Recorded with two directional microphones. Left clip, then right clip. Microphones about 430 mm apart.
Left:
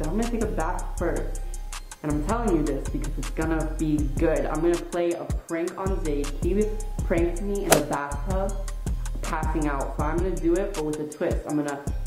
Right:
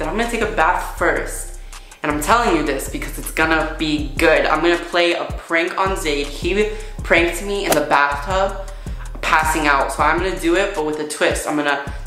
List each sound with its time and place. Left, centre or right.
0.0 s speech: centre